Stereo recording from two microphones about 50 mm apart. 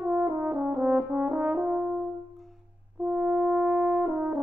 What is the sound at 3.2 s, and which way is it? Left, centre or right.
French horn, right.